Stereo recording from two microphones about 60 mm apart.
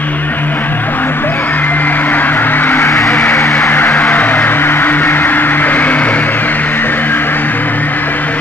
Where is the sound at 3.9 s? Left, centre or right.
Left.